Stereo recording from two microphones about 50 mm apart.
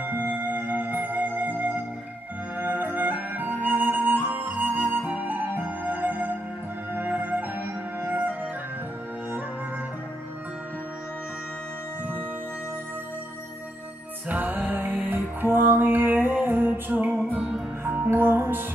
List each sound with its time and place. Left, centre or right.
0.0 s music: right
2.5 s flute: right
4.9 s music: right
14.3 s music: right